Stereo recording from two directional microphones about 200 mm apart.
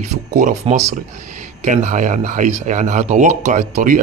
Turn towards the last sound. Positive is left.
turn(degrees=-40)  # may be behind; listen again after turning